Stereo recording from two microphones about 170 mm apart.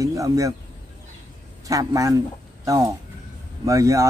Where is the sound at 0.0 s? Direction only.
20° right (ahead or behind).